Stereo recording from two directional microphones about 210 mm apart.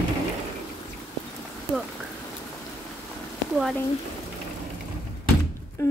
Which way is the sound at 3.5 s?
Centre (ahead or behind).